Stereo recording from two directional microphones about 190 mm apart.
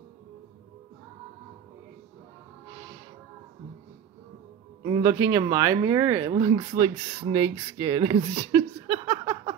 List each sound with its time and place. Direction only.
4.8 s speech: 20° right (ahead or behind)
6.5 s speech: 30° right (ahead or behind)
8.4 s a sound: 20° right (ahead or behind)